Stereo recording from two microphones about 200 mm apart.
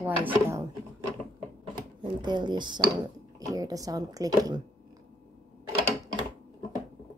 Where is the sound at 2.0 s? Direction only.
20° right (ahead or behind).